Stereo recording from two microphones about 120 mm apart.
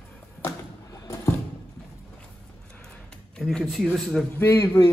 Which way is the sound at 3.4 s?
5° left (ahead or behind).